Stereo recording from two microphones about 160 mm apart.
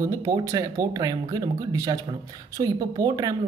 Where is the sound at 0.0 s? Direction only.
20° right (ahead or behind).